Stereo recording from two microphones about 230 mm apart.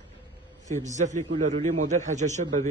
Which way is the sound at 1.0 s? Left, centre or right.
Right.